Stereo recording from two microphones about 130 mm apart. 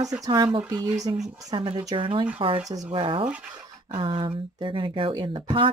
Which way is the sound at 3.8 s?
40° right (ahead or behind).